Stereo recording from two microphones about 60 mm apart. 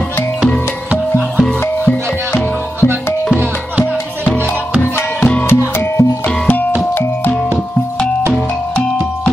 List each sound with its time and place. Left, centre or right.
1.9 s music: left
5.2 s music: left
5.5 s music: left
6.2 s music: left
6.9 s music: left